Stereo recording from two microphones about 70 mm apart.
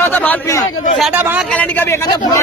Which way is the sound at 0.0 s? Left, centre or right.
Left.